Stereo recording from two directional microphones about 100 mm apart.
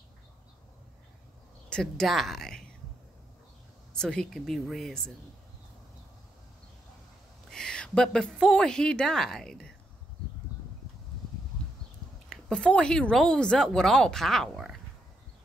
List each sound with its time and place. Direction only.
1.7 s speech: 5° left (ahead or behind)
3.9 s speech: 5° left (ahead or behind)
7.4 s a woman's voice: 5° left (ahead or behind)
12.3 s speech: 5° left (ahead or behind)